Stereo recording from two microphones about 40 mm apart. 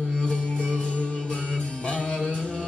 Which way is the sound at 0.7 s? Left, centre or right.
Left.